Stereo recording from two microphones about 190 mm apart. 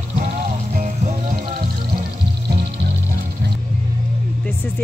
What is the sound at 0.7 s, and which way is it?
Music, 45° right (ahead or behind).